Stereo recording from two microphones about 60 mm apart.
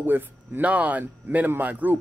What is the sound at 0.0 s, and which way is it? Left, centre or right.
Speech, right.